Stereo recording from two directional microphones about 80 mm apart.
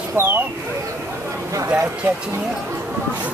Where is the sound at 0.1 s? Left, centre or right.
Right.